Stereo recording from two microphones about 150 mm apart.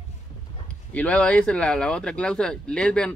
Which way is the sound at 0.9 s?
10° left (ahead or behind).